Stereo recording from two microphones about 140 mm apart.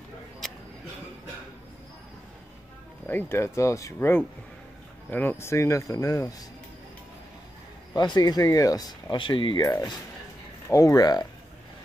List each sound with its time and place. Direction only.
0.4 s a sound: centre (ahead or behind)
3.1 s speech: 15° left (ahead or behind)
7.9 s speech: 30° left (ahead or behind)